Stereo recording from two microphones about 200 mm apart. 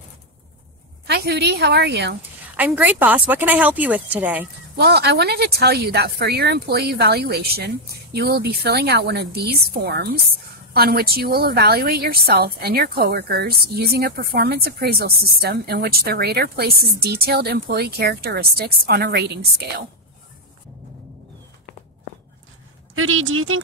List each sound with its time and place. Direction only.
1.0 s a woman's voice: 55° right (ahead or behind)
2.5 s a woman's voice: 10° right (ahead or behind)
4.7 s a woman's voice: 55° right (ahead or behind)
22.9 s a woman's voice: 90° right